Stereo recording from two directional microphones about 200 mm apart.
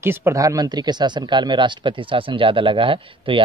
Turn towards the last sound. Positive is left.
turn(degrees=-25)  # may be behind; listen again after turning